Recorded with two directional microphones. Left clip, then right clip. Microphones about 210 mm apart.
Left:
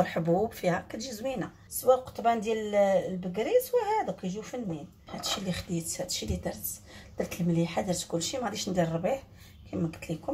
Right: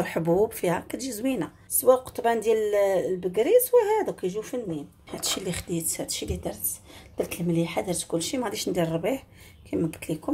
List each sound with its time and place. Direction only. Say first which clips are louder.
0.0 s speech: right 3 dB; 30° right (ahead or behind)